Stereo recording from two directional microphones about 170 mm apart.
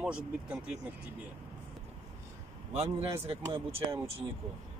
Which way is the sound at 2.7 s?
35° right (ahead or behind).